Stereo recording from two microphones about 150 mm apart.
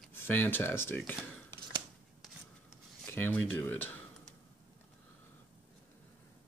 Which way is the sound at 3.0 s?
15° left (ahead or behind).